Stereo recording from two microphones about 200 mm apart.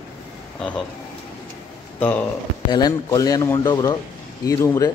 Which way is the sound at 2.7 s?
20° left (ahead or behind).